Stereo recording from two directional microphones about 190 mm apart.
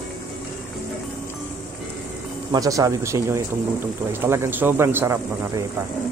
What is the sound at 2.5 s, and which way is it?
Speech, 20° right (ahead or behind).